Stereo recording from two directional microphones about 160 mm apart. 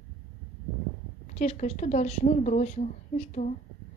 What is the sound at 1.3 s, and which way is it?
A woman's voice, 45° left (ahead or behind).